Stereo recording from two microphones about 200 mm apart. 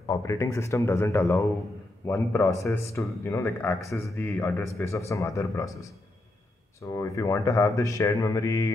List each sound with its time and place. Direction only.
0.0 s speech: 15° left (ahead or behind)